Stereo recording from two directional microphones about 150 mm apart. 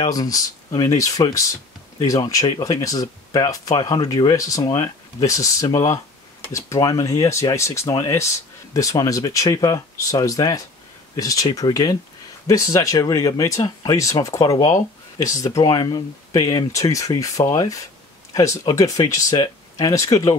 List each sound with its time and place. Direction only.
0.0 s speech: 25° left (ahead or behind)